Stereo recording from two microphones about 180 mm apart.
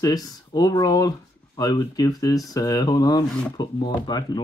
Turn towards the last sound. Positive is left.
turn(degrees=25)  # may be behind; listen again after turning